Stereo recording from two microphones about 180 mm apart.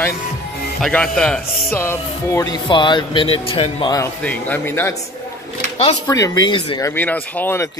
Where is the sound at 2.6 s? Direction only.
25° left (ahead or behind).